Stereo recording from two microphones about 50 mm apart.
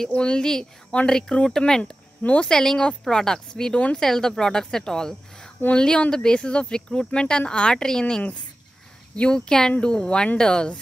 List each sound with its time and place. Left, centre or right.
0.1 s a woman's voice: centre
1.8 s speech: left
2.4 s a woman's voice: centre
3.7 s speech: left
4.0 s a woman's voice: centre